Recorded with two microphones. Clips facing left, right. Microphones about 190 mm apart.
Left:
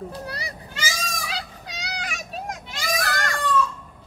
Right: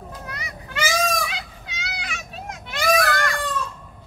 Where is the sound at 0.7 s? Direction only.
60° right (ahead or behind).